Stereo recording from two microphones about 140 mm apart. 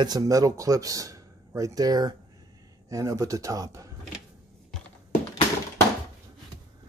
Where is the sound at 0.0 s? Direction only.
25° right (ahead or behind).